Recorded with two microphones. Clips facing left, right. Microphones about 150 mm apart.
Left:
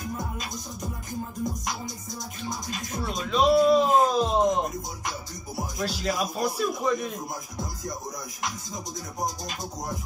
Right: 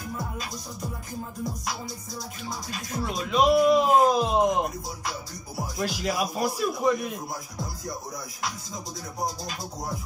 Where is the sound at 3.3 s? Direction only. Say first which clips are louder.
Even; 10° right (ahead or behind).